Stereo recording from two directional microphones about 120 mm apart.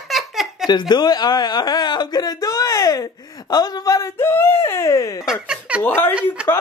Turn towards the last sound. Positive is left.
turn(degrees=-10)  # may be behind; listen again after turning